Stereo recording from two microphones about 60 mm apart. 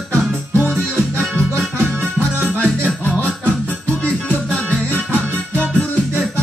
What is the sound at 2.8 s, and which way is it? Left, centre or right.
Music, left.